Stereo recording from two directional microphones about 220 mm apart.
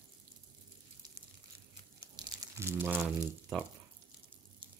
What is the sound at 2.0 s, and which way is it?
Crumpling, 15° right (ahead or behind).